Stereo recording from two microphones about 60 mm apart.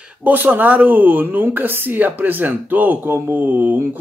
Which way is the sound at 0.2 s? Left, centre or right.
Right.